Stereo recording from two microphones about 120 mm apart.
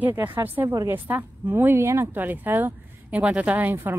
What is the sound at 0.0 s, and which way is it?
Speech, 15° right (ahead or behind).